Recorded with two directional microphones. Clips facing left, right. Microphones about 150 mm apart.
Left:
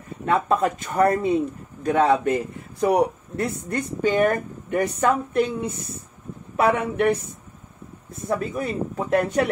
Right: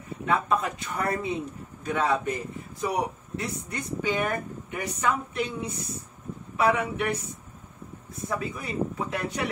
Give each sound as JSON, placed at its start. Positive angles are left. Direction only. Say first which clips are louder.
{"t": 0.2, "sound": "a man's voice", "louder": "left 5 dB", "side_deg": 50}
{"t": 1.9, "sound": "a man's voice", "louder": "left 7 dB", "side_deg": 60}
{"t": 8.3, "sound": "a man's voice", "louder": "left 7 dB", "side_deg": 45}